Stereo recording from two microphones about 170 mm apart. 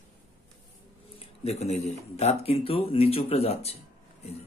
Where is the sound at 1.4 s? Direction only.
40° left (ahead or behind).